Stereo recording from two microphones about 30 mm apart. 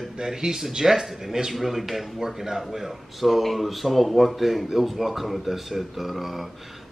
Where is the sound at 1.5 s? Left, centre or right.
Centre.